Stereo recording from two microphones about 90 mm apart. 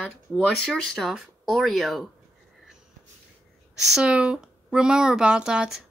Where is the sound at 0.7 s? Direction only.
5° left (ahead or behind).